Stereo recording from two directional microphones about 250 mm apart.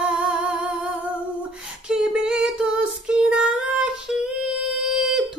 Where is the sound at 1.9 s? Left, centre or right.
Centre.